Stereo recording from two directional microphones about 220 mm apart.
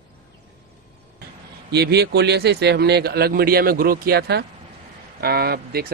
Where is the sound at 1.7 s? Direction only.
50° right (ahead or behind).